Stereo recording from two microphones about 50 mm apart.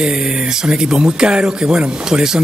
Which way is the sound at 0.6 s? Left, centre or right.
Centre.